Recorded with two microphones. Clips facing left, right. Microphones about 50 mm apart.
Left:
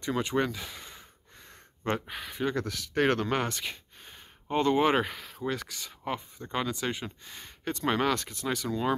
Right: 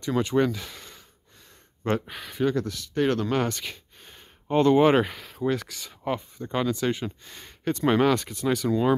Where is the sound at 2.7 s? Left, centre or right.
Left.